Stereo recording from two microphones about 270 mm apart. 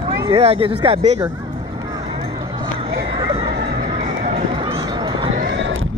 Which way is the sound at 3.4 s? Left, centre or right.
Right.